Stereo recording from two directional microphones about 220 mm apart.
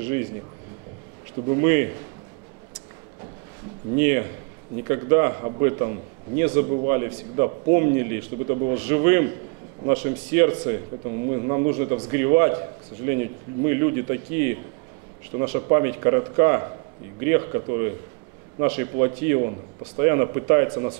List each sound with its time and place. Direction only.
0.0 s speech: 15° right (ahead or behind)
1.5 s a man's voice: 15° right (ahead or behind)
3.9 s a man's voice: 15° right (ahead or behind)